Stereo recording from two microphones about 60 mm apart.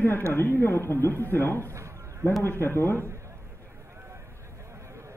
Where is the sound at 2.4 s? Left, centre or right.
Left.